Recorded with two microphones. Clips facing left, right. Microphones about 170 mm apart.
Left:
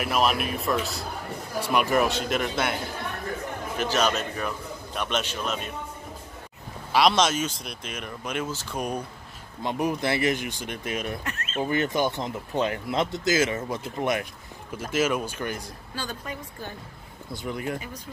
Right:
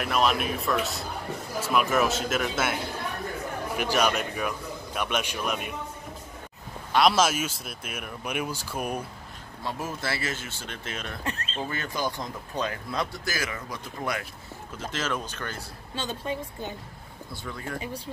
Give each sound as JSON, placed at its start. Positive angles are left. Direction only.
{"t": 0.0, "sound": "speech", "side_deg": 0}
{"t": 6.9, "sound": "speech", "side_deg": 0}
{"t": 9.6, "sound": "speech", "side_deg": 20}
{"t": 11.2, "sound": "a sound", "side_deg": -30}
{"t": 11.6, "sound": "speech", "side_deg": 20}
{"t": 14.8, "sound": "speech", "side_deg": 10}
{"t": 15.9, "sound": "speech", "side_deg": -25}
{"t": 17.3, "sound": "speech", "side_deg": 20}